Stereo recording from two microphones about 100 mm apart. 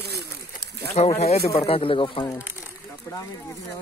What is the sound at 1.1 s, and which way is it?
Speech, 90° left.